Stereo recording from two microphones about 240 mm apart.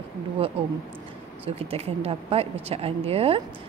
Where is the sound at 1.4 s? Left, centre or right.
Right.